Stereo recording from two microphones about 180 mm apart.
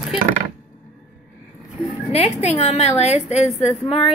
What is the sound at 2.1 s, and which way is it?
A woman's voice, 35° left (ahead or behind).